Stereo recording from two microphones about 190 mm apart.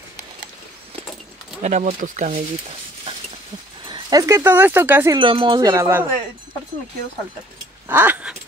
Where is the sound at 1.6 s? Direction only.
40° right (ahead or behind).